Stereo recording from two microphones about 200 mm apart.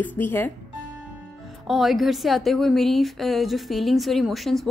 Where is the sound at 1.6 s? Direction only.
Centre (ahead or behind).